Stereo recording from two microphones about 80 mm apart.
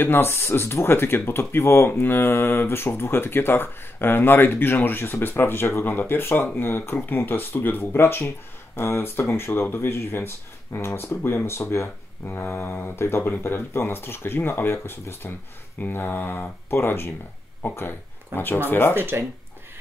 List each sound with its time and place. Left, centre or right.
0.0 s speech: left
18.9 s speech: right